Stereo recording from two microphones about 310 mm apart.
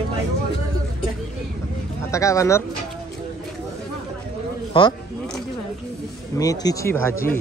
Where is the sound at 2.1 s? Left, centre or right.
Centre.